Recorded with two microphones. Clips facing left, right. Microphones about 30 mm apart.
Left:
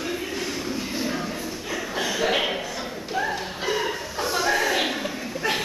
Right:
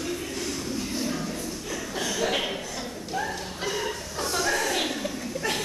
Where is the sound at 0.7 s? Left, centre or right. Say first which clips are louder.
Left 2 dB; centre.